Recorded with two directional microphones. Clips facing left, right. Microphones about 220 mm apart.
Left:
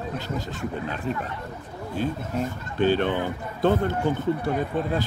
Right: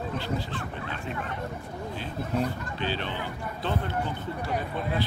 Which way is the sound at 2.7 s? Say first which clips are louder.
Left 10 dB; 50° left (ahead or behind).